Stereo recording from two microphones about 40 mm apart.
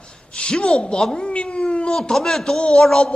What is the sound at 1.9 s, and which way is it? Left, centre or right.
Speech, centre.